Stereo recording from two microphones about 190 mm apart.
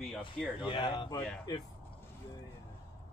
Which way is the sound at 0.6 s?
25° left (ahead or behind).